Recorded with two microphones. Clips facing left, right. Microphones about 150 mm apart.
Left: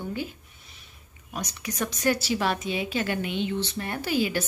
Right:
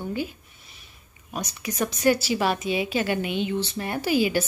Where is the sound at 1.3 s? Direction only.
10° right (ahead or behind).